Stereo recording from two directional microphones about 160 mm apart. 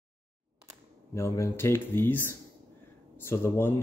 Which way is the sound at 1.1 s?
15° left (ahead or behind).